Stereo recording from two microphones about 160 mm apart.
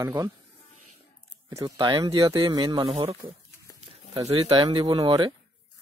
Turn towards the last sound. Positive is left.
turn(degrees=-30)  # may be behind; listen again after turning